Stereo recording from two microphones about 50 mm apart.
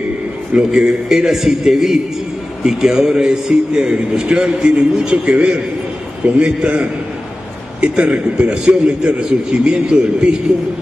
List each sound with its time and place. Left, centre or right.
0.6 s a man's voice: centre